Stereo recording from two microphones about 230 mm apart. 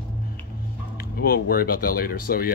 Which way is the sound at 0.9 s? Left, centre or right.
Left.